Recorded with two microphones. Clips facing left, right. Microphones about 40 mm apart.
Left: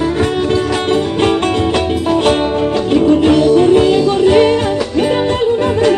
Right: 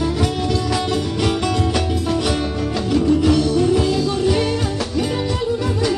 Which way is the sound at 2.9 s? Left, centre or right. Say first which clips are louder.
Left 5 dB; left.